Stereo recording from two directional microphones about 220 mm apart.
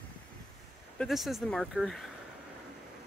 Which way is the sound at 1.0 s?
Centre (ahead or behind).